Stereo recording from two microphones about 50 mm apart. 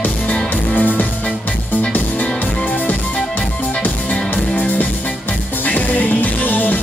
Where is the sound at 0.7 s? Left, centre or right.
Left.